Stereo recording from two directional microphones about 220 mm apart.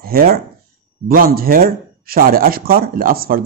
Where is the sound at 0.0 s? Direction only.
45° right (ahead or behind).